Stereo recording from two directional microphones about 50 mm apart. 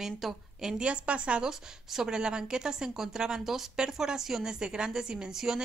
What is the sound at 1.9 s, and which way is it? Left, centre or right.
Speech, centre.